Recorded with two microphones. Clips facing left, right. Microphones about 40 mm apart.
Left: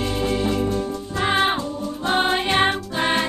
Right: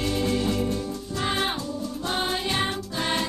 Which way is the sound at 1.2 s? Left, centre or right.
Left.